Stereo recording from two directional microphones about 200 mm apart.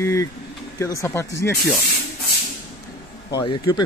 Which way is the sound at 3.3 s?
20° left (ahead or behind).